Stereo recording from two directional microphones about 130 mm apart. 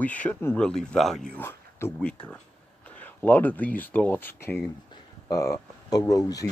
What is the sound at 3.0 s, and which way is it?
Speech, 10° left (ahead or behind).